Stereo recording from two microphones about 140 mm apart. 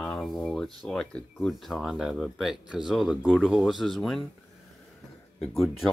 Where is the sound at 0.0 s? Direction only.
Centre (ahead or behind).